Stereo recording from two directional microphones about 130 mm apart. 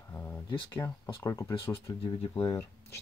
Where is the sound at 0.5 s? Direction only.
30° left (ahead or behind).